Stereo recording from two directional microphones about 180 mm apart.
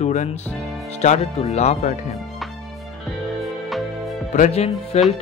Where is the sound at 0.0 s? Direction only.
40° left (ahead or behind).